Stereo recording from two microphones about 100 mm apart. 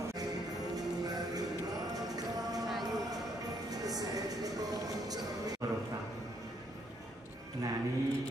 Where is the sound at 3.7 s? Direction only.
40° right (ahead or behind).